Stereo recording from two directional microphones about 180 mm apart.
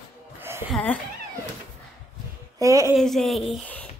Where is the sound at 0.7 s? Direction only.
10° left (ahead or behind).